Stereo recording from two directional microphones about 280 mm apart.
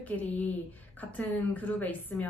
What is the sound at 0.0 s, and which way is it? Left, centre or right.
Speech, centre.